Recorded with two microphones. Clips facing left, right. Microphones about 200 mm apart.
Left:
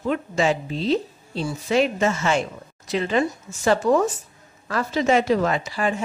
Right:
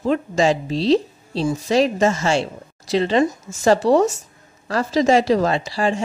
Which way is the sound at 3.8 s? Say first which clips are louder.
Right 4 dB; 35° right (ahead or behind).